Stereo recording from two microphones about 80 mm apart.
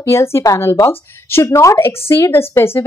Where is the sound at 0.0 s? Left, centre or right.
Left.